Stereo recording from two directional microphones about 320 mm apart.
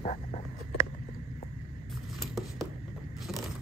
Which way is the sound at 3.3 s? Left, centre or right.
Centre.